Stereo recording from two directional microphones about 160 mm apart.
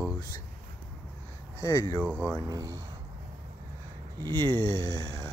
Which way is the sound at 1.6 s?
25° left (ahead or behind).